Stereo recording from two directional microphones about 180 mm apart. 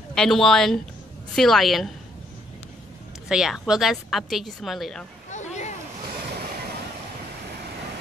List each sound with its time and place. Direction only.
0.1 s a woman's voice: 5° left (ahead or behind)
3.3 s a woman's voice: 5° right (ahead or behind)
5.3 s a sound: 40° left (ahead or behind)